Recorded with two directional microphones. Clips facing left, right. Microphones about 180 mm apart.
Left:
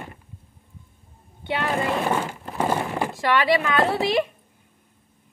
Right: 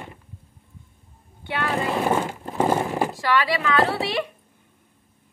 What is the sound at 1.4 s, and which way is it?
Vehicle, 20° left (ahead or behind).